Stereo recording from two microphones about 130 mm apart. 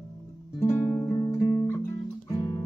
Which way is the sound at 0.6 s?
20° left (ahead or behind).